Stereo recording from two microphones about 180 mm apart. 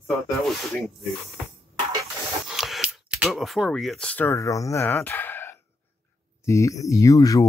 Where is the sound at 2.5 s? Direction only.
Centre (ahead or behind).